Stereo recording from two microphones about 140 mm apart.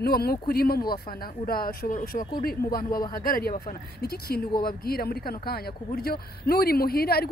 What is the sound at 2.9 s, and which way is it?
Speech, 25° left (ahead or behind).